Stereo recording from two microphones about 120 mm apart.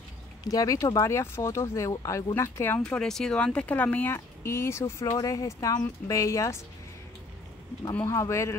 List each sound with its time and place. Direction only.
0.5 s speech: 30° left (ahead or behind)
2.8 s speech: 5° left (ahead or behind); by 6.5 s 25° left (ahead or behind)
7.9 s speech: 20° left (ahead or behind)